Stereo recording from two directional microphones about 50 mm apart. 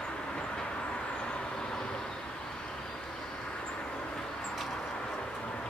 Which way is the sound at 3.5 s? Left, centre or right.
Left.